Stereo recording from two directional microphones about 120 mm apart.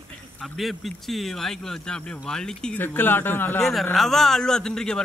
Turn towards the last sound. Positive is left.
turn(degrees=5)  # may be behind; listen again after turning